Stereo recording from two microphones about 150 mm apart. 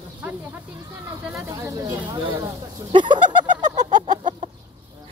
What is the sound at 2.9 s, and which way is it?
Bird, 30° right (ahead or behind).